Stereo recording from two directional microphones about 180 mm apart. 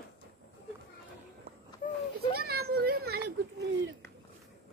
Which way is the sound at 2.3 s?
60° right (ahead or behind).